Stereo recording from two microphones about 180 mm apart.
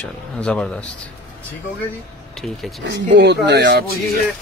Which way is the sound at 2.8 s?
80° right.